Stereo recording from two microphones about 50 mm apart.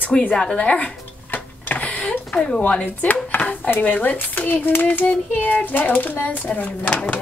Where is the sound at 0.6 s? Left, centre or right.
Left.